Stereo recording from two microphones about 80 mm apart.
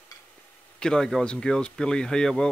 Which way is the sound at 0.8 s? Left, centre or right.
Centre.